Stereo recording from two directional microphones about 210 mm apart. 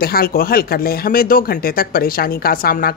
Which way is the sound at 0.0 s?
45° left (ahead or behind).